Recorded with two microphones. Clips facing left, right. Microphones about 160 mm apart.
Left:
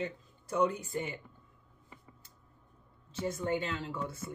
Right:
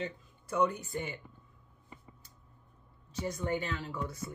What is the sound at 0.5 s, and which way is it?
Speech, 30° left (ahead or behind).